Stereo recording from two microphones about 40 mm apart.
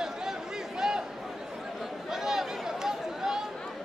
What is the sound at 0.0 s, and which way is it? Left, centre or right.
Chatter, centre.